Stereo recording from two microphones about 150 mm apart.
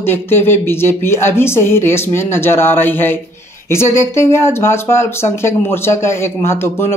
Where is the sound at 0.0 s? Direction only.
15° left (ahead or behind).